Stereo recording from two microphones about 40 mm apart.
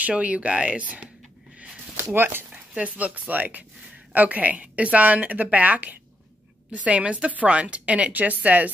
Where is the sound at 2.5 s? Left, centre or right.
Right.